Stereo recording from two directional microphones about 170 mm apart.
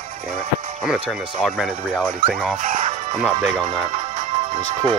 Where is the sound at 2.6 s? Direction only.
50° right (ahead or behind).